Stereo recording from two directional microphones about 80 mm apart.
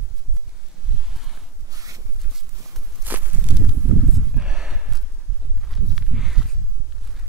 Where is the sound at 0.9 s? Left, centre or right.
Centre.